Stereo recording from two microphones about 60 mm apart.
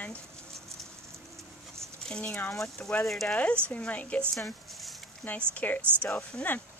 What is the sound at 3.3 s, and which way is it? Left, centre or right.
Speech, centre.